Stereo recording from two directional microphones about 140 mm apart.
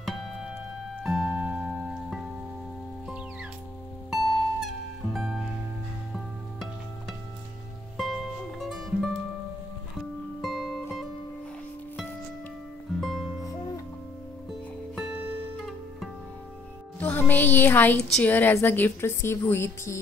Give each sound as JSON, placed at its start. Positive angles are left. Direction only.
{"t": 0.0, "sound": "music", "side_deg": 0}
{"t": 4.1, "sound": "music", "side_deg": 0}
{"t": 13.0, "sound": "music", "side_deg": 0}
{"t": 13.4, "sound": "music", "side_deg": 25}
{"t": 15.2, "sound": "music", "side_deg": -10}
{"t": 17.0, "sound": "music", "side_deg": 15}
{"t": 18.0, "sound": "a woman's voice", "side_deg": 10}